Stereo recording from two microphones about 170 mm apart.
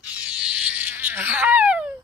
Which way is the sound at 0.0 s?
10° right (ahead or behind).